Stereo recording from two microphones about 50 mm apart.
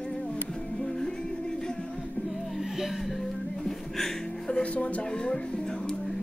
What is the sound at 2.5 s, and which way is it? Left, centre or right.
Music, centre.